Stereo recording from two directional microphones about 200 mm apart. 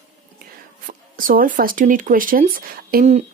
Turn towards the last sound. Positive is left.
turn(degrees=-45)  # may be behind; listen again after turning